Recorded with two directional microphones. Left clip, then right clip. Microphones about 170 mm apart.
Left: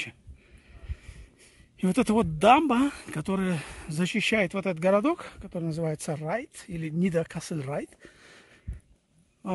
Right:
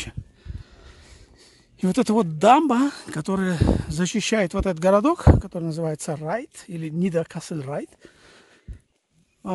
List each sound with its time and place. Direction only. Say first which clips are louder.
1.8 s speech: right 4 dB; 20° right (ahead or behind)